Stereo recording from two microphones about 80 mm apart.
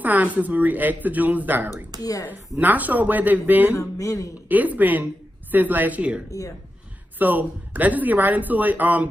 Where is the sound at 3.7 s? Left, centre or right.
Left.